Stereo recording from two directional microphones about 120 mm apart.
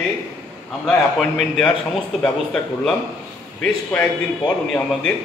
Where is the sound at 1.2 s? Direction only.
5° left (ahead or behind).